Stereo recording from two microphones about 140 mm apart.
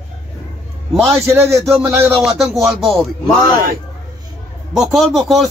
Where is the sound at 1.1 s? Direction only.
20° right (ahead or behind).